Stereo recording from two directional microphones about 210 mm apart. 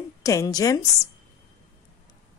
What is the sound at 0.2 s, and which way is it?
Speech, 15° left (ahead or behind).